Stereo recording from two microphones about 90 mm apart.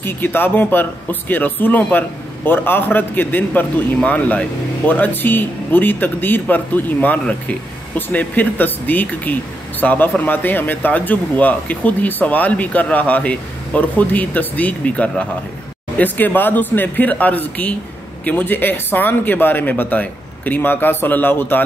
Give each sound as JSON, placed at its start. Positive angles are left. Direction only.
{"t": 0.0, "sound": "a man's voice", "side_deg": 20}